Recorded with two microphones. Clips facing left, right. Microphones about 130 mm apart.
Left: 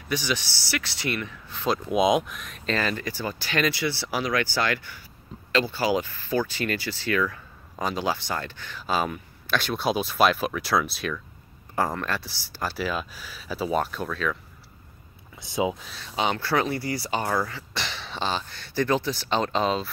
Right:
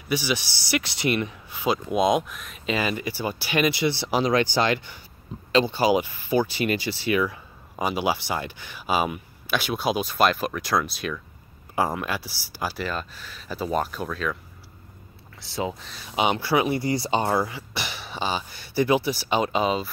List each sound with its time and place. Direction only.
0.1 s speech: 10° right (ahead or behind)
15.4 s speech: 15° left (ahead or behind)
16.0 s speech: 15° right (ahead or behind)